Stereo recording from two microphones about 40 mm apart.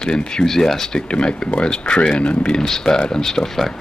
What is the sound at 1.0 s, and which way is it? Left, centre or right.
Speech, left.